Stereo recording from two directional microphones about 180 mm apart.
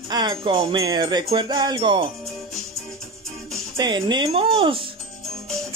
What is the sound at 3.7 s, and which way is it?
Speech, 25° right (ahead or behind).